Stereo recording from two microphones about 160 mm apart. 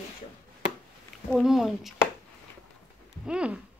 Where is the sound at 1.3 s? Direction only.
5° right (ahead or behind).